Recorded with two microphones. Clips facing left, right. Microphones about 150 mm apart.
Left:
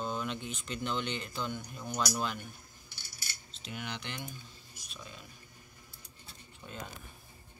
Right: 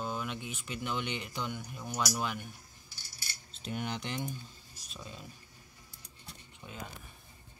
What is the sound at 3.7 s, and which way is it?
Speech, 40° right (ahead or behind).